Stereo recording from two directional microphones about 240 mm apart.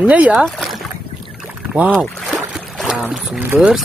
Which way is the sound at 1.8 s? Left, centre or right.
Centre.